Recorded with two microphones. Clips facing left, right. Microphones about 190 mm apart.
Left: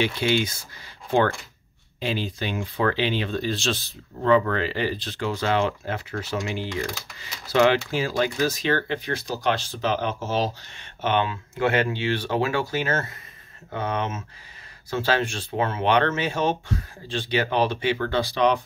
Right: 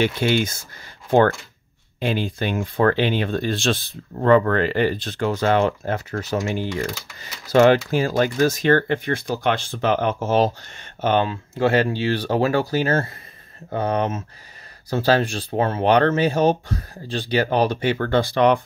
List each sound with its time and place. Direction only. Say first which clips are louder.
0.0 s speech: right 3 dB; 50° right (ahead or behind)
2.0 s speech: right 4 dB; 55° right (ahead or behind)